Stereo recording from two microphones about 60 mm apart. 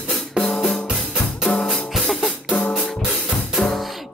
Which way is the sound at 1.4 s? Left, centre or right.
Centre.